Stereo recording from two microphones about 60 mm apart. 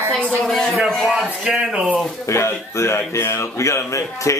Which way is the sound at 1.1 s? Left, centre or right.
Centre.